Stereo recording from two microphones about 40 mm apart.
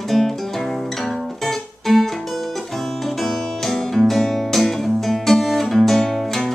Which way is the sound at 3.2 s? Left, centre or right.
Centre.